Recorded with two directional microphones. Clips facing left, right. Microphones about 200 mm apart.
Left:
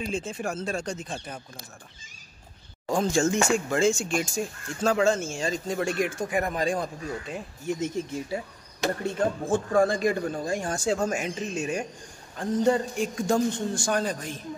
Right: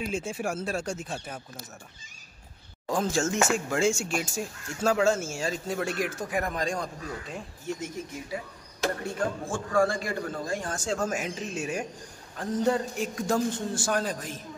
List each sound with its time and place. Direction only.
0.0 s speech: 10° right (ahead or behind)
2.9 s speech: centre (ahead or behind)
7.6 s speech: 25° left (ahead or behind)
11.1 s speech: 5° right (ahead or behind)